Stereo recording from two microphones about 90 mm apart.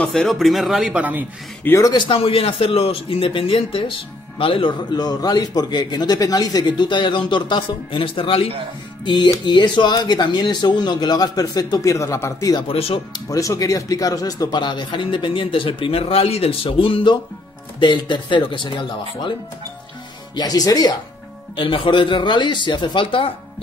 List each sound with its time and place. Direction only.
0.0 s speech: 5° left (ahead or behind)
0.8 s a man's voice: 15° right (ahead or behind)
1.8 s speech: 45° left (ahead or behind)
2.0 s a man's voice: 90° left
4.9 s speech: 50° left (ahead or behind); by 8.5 s 80° left
9.0 s speech: 60° left (ahead or behind); by 12.5 s 35° left (ahead or behind)
12.6 s a man's voice: 90° left
13.1 s speech: 40° left (ahead or behind); by 17.2 s 75° left (ahead or behind)
17.7 s speech: 60° left (ahead or behind)
20.3 s speech: 45° left (ahead or behind)
21.5 s speech: 70° left (ahead or behind)